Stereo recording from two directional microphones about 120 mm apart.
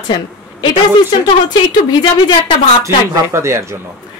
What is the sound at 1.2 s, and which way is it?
A woman's voice, 35° left (ahead or behind).